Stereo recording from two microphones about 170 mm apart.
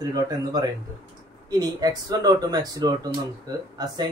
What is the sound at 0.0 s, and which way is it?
Speech, 25° right (ahead or behind).